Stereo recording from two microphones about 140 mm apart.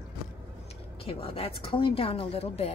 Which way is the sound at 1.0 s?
45° left (ahead or behind).